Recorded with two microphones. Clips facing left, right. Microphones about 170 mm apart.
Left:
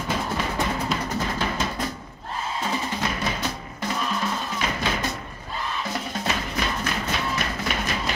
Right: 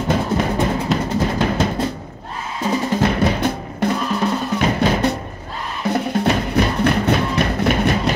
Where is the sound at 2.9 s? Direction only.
55° right (ahead or behind).